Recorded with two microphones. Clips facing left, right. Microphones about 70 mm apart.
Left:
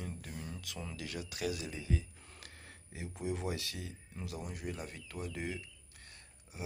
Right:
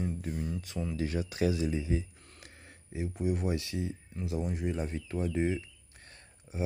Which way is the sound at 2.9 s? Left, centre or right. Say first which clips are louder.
Right 7 dB; centre.